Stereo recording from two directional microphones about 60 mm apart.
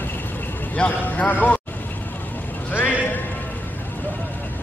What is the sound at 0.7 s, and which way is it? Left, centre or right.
Speech, left.